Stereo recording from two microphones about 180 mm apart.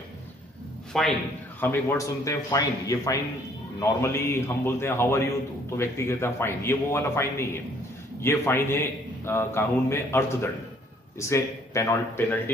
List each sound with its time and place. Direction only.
0.9 s a man's voice: 5° left (ahead or behind)